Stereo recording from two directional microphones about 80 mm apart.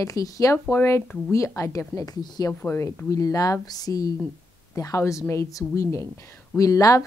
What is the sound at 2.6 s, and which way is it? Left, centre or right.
Speech, left.